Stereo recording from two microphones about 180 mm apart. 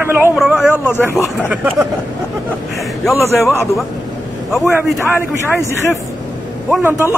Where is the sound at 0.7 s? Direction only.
10° left (ahead or behind).